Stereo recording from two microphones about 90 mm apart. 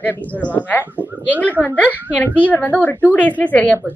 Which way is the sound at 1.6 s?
15° left (ahead or behind).